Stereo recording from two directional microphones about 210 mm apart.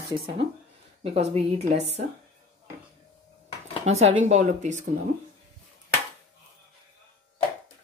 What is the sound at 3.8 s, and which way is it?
Speech, 30° right (ahead or behind).